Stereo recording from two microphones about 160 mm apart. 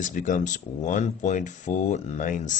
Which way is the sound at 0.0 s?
55° left (ahead or behind).